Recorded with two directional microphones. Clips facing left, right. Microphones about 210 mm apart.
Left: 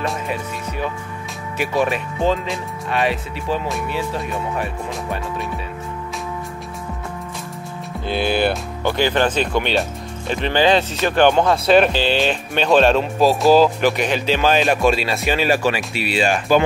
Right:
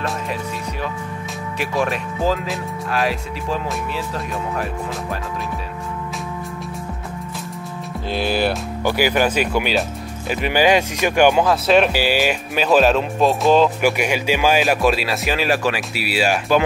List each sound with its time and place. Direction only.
0.0 s speech: centre (ahead or behind)
8.1 s speech: centre (ahead or behind)
13.7 s speech: 10° right (ahead or behind)